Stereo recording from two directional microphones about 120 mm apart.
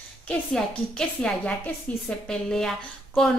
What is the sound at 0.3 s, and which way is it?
A woman's voice, 10° left (ahead or behind).